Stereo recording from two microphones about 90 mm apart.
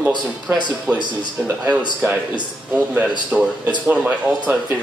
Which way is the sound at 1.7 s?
15° right (ahead or behind).